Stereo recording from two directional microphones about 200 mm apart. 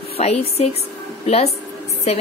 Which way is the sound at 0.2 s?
30° left (ahead or behind).